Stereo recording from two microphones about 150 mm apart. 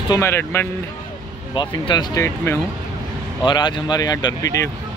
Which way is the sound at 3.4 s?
30° left (ahead or behind).